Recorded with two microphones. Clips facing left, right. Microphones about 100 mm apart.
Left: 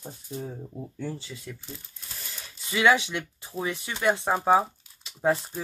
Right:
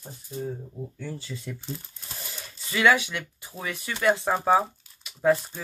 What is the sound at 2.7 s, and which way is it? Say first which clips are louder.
Speech: even; 20° left (ahead or behind).